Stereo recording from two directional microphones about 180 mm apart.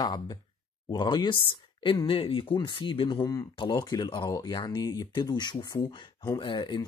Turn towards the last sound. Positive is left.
turn(degrees=25)  # may be behind; listen again after turning